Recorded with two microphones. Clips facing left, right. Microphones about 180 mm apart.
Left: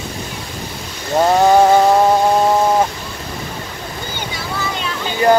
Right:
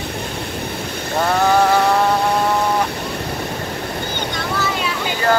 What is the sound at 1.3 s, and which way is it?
Mantra, 20° left (ahead or behind).